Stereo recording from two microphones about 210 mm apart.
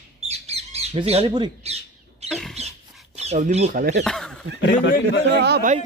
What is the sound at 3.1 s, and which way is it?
Speech, 35° right (ahead or behind).